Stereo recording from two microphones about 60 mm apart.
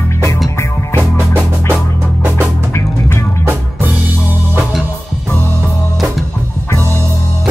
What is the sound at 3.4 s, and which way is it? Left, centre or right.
Music, right.